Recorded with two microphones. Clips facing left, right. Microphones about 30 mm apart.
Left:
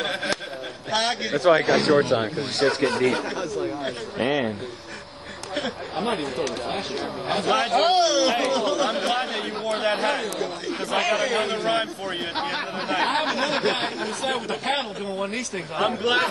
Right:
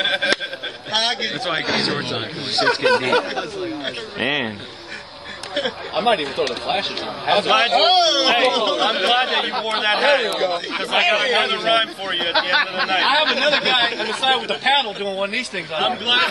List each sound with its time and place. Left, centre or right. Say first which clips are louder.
0.0 s a sound: right 7 dB; right
0.9 s speech: right 2 dB; right
5.5 s speech: right 5 dB; right